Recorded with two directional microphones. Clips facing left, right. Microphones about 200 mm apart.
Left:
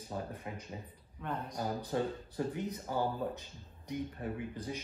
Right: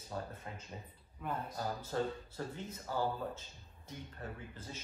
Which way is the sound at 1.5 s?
15° left (ahead or behind).